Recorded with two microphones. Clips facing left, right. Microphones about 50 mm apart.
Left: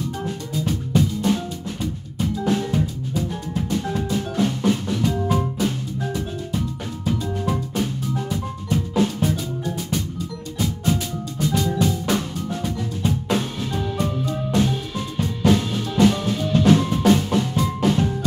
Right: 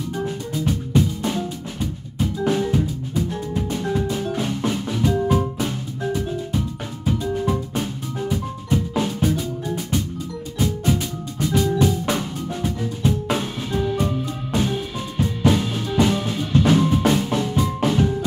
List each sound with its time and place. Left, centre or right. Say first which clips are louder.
0.2 s music: right 1 dB; centre
11.4 s music: right 2 dB; centre
11.8 s drum kit: right 1 dB; centre
14.5 s music: even; centre
17.0 s drum: left 2 dB; centre
17.8 s music: even; centre